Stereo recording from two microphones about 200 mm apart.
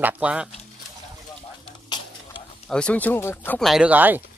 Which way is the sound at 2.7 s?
5° left (ahead or behind).